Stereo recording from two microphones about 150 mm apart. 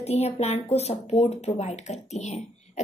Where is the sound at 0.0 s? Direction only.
45° left (ahead or behind).